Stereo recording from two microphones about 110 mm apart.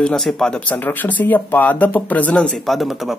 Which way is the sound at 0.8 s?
15° left (ahead or behind).